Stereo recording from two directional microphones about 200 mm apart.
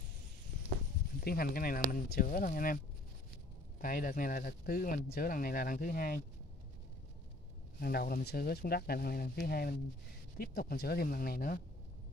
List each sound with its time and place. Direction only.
1.2 s speech: 50° left (ahead or behind)
3.8 s speech: 45° left (ahead or behind)
7.8 s speech: 50° left (ahead or behind)